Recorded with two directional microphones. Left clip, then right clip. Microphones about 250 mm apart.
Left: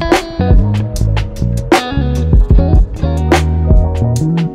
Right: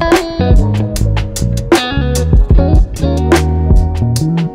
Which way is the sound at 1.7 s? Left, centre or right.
Centre.